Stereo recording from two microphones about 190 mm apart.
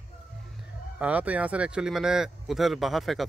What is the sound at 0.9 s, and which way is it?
Speech, 5° right (ahead or behind).